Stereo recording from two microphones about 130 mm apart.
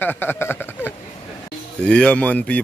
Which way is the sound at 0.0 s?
15° left (ahead or behind).